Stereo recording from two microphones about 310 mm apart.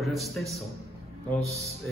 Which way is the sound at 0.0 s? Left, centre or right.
Centre.